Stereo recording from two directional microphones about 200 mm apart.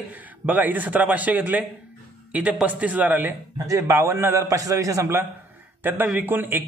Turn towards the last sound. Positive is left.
turn(degrees=-10)  # may be behind; listen again after turning